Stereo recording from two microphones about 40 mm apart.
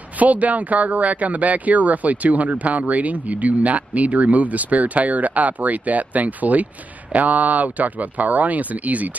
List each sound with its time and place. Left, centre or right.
0.2 s speech: right